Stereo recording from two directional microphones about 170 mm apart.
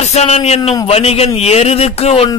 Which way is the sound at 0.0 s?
40° left (ahead or behind).